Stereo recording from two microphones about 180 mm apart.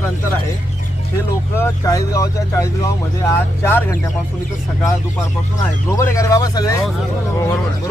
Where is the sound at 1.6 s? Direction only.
20° left (ahead or behind).